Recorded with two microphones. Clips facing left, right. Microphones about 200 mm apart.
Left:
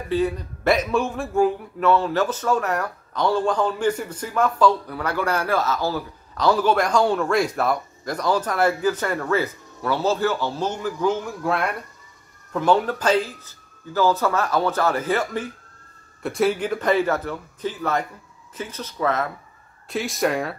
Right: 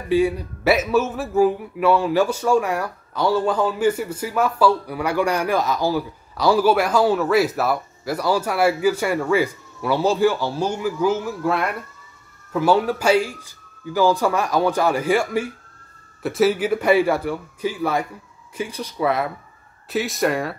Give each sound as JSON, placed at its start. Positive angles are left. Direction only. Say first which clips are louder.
{"t": 0.1, "sound": "a man's voice", "louder": "right 4 dB", "side_deg": -10}
{"t": 19.9, "sound": "speech", "louder": "right 2 dB", "side_deg": 0}